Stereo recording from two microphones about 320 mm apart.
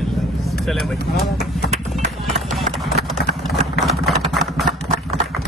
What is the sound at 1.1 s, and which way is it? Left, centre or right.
Speech, centre.